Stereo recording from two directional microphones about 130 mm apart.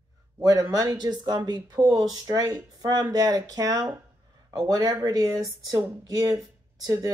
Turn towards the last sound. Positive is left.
turn(degrees=-25)  # may be behind; listen again after turning